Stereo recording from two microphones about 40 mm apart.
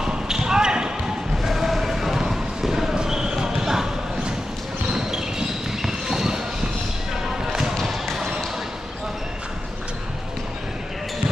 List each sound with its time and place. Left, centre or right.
0.0 s basketball bounce: centre
1.4 s basketball bounce: centre
5.8 s a sound: centre